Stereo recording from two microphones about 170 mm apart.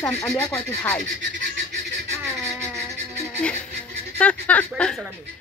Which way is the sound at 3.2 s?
5° left (ahead or behind).